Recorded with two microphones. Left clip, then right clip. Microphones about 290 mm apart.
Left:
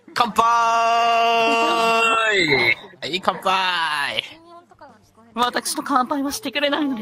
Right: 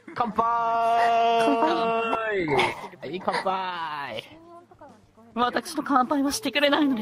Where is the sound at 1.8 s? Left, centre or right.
Left.